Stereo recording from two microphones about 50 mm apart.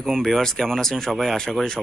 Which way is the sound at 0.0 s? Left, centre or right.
Centre.